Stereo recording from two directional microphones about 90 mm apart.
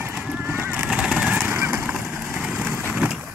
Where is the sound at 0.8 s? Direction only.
5° right (ahead or behind).